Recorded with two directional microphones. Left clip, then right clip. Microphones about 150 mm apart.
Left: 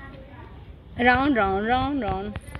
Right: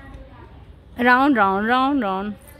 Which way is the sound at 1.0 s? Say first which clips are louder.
Right 4 dB; 40° right (ahead or behind).